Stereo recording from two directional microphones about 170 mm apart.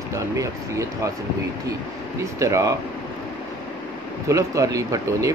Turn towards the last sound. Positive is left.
turn(degrees=-20)  # may be behind; listen again after turning